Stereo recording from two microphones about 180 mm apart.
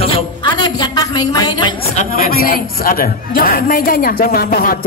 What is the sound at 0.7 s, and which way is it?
Music, 20° left (ahead or behind).